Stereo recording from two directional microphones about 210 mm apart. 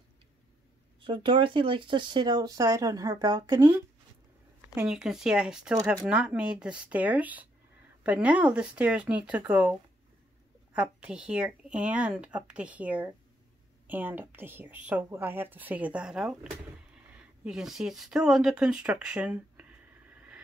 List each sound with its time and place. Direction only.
1.0 s speech: 25° right (ahead or behind)
3.5 s a woman's voice: 10° right (ahead or behind)